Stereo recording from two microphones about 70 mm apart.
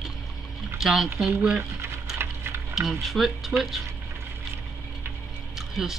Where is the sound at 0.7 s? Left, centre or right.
Centre.